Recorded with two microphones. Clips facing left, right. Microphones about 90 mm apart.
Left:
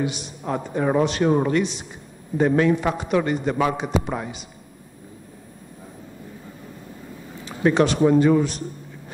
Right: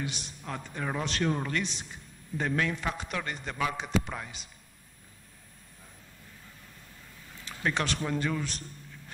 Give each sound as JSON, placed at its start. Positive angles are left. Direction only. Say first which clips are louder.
{"t": 0.0, "sound": "a man's voice", "louder": "left 11 dB", "side_deg": 10}
{"t": 7.1, "sound": "a man's voice", "louder": "left 8 dB", "side_deg": 20}